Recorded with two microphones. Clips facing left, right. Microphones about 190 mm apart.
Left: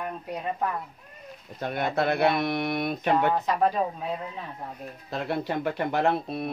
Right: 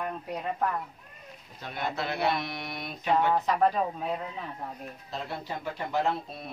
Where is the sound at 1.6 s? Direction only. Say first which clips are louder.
Left 7 dB; 55° left (ahead or behind).